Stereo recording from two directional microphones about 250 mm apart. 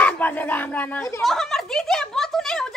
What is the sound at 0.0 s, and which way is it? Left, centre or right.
Speech, centre.